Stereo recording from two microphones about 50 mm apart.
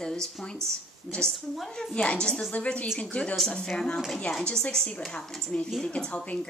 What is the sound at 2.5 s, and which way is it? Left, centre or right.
Speech, left.